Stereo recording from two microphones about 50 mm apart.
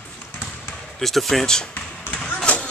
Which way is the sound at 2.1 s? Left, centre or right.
Left.